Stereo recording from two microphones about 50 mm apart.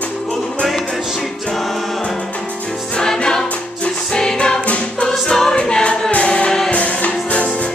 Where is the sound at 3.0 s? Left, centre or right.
Centre.